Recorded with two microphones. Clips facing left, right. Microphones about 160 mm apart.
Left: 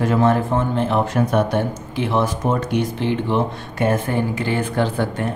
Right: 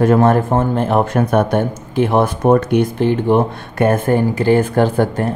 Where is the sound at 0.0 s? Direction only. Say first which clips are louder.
Right 5 dB; 50° right (ahead or behind).